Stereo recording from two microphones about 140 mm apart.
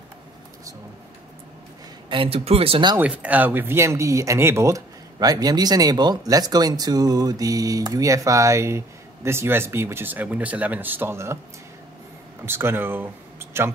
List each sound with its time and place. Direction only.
2.0 s speech: 40° right (ahead or behind)
3.0 s speech: 10° right (ahead or behind)
12.4 s speech: 15° right (ahead or behind)